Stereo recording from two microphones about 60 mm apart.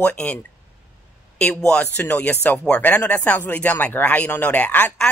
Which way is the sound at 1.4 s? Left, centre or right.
Centre.